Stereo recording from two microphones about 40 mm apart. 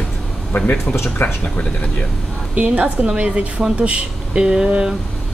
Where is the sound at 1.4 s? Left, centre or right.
Left.